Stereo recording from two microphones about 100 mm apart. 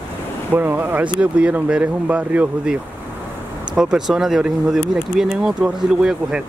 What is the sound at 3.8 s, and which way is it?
Speech, 5° right (ahead or behind).